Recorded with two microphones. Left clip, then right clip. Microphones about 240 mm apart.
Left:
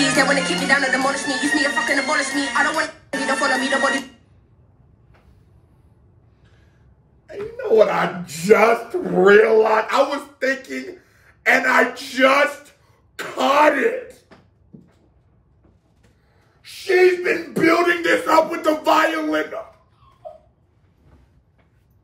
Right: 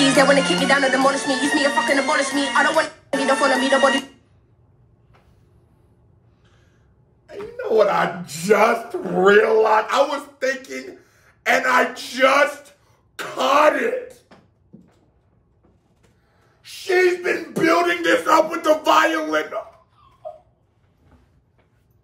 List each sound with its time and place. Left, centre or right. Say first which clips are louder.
0.0 s speech: right 2 dB; right
7.2 s speech: left 3 dB; centre
16.8 s speech: left 2 dB; centre